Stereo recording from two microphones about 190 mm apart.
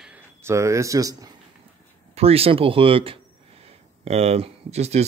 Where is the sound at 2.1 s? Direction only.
30° right (ahead or behind).